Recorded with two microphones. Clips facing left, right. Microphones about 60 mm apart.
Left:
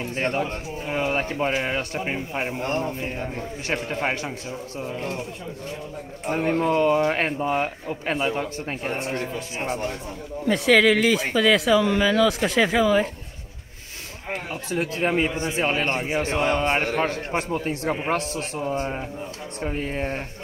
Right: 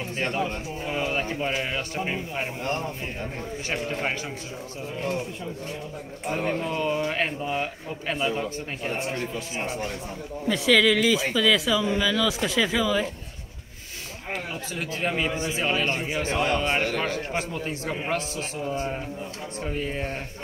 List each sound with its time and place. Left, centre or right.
0.1 s speech: left
3.6 s speech: left
6.3 s speech: left
10.5 s speech: left
14.5 s speech: left